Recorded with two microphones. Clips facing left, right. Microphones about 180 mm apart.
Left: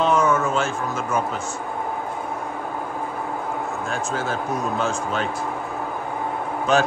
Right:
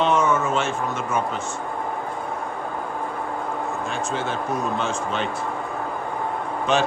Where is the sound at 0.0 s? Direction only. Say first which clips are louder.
Left 1 dB; centre (ahead or behind).